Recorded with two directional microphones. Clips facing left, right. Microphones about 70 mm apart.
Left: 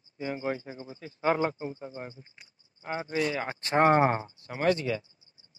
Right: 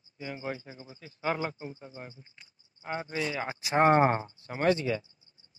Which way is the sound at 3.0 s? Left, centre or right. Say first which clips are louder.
Left 5 dB; left.